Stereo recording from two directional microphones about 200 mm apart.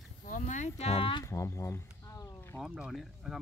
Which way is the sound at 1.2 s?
15° left (ahead or behind).